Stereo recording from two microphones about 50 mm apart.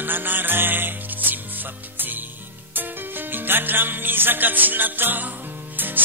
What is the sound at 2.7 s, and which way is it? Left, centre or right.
Music, right.